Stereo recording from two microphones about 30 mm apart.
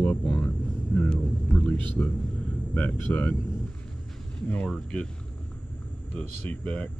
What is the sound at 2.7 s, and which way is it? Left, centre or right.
Speech, left.